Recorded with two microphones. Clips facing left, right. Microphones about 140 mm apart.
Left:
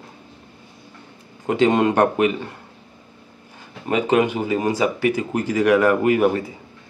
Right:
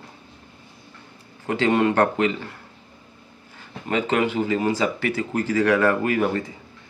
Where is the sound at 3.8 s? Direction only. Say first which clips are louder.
Left 4 dB; 15° left (ahead or behind).